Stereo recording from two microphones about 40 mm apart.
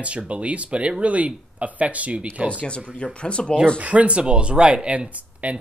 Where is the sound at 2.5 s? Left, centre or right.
Left.